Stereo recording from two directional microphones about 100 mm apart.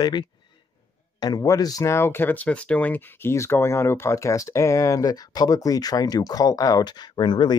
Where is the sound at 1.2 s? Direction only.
35° left (ahead or behind).